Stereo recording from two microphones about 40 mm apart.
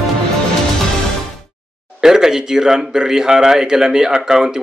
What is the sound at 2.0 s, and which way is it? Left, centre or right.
Speech, centre.